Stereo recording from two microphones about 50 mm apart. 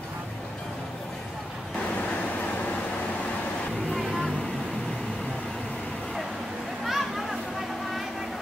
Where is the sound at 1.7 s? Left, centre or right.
Left.